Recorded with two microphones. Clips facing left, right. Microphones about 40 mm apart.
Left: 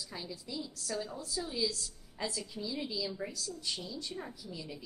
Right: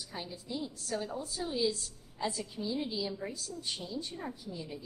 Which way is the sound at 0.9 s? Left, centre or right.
Right.